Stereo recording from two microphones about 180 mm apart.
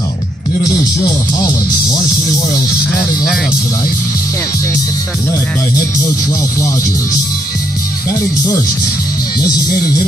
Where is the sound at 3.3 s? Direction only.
5° right (ahead or behind).